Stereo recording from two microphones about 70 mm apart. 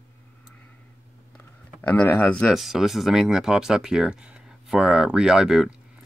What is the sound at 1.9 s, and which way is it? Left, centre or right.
Speech, left.